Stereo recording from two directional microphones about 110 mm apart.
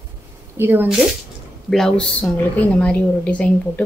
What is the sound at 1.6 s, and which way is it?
A woman's voice, 5° left (ahead or behind).